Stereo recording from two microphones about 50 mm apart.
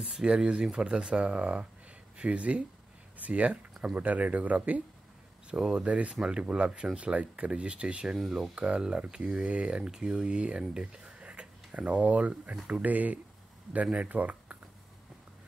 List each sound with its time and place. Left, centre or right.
0.0 s speech: centre; by 4.8 s right
5.5 s speech: centre
8.1 s speech: centre
8.5 s speech: right